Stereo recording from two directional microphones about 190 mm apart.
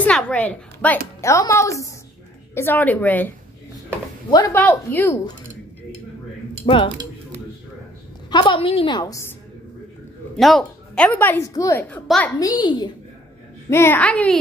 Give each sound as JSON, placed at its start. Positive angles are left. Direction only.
{"t": 0.0, "sound": "a woman's voice", "side_deg": 5}
{"t": 4.3, "sound": "a woman's voice", "side_deg": 20}
{"t": 4.6, "sound": "a woman's voice", "side_deg": 10}
{"t": 6.6, "sound": "speech", "side_deg": 25}
{"t": 8.3, "sound": "a woman's voice", "side_deg": 25}
{"t": 10.3, "sound": "a woman's voice", "side_deg": 0}
{"t": 13.7, "sound": "a woman's voice", "side_deg": 10}